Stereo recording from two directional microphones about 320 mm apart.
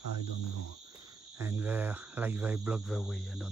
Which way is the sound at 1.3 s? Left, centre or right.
Centre.